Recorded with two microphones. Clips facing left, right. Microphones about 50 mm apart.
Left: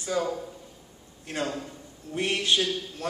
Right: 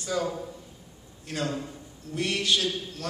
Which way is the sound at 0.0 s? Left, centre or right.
Centre.